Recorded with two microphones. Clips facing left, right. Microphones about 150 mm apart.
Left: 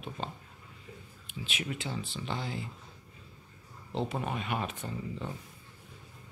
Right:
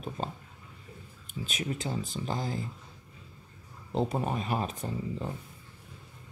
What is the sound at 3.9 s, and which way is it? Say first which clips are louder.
Speech: right 4 dB; 40° right (ahead or behind).